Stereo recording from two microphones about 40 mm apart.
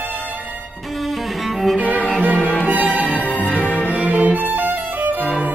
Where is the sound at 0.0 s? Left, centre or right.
Left.